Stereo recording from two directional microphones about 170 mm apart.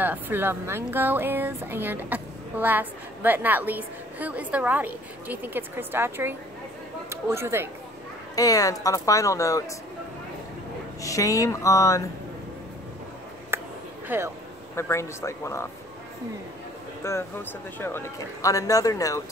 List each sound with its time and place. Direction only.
0.0 s speech: 10° right (ahead or behind)
8.4 s speech: 20° left (ahead or behind)
11.0 s speech: 20° left (ahead or behind)
13.5 s a sound: 15° right (ahead or behind)
14.0 s speech: 15° right (ahead or behind)
14.8 s speech: 15° left (ahead or behind)
17.0 s speech: 15° left (ahead or behind)